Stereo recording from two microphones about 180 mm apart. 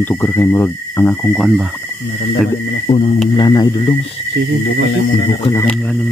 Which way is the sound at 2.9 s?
35° left (ahead or behind).